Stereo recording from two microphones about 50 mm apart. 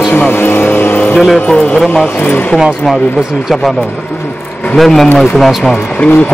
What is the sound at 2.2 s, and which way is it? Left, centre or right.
Speech, left.